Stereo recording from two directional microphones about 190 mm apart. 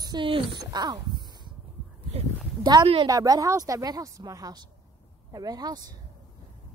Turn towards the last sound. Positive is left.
turn(degrees=-20)  # may be behind; listen again after turning